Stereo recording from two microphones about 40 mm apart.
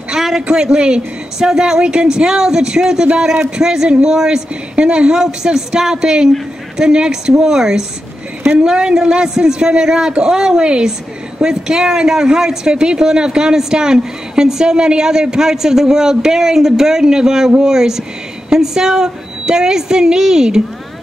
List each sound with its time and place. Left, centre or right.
0.1 s a sound: centre
0.5 s speech: centre
3.6 s speech: centre